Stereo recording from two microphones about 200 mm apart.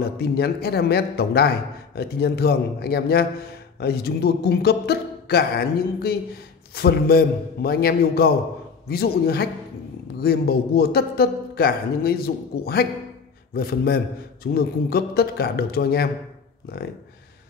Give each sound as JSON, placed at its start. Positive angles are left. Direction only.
{"t": 0.0, "sound": "speech", "side_deg": 50}